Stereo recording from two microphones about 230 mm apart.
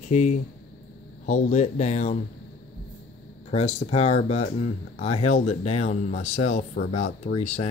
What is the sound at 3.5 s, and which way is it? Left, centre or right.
Speech, left.